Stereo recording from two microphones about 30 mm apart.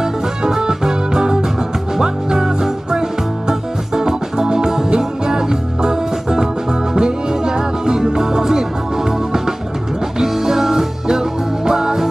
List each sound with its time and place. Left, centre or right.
0.0 s music: centre
2.0 s music: centre